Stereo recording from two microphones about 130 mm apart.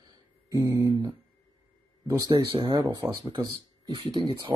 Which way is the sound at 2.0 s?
30° right (ahead or behind).